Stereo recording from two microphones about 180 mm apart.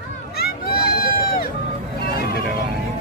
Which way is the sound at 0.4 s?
55° left (ahead or behind).